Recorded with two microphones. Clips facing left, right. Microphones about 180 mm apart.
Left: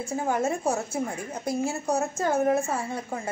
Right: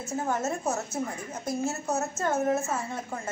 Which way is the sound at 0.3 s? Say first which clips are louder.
Left 4 dB; 10° left (ahead or behind).